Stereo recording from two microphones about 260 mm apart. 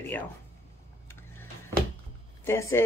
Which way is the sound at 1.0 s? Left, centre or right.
Centre.